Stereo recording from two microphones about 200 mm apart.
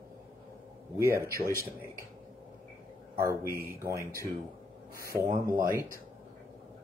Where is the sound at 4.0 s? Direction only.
15° left (ahead or behind).